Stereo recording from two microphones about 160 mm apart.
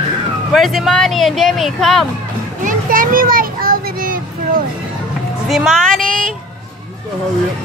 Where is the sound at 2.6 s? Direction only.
60° right (ahead or behind).